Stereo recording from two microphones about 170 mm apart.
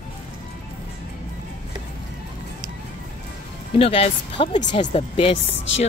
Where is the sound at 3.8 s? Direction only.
35° left (ahead or behind).